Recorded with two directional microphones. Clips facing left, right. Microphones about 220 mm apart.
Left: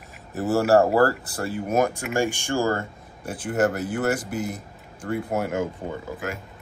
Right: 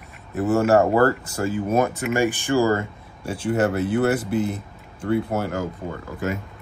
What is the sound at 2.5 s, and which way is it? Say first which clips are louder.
Speech: right 5 dB; 5° right (ahead or behind).